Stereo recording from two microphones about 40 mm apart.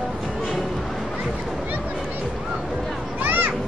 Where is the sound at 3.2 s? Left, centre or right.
Right.